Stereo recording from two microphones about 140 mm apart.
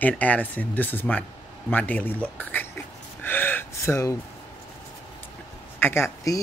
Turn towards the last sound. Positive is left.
turn(degrees=20)  # may be behind; listen again after turning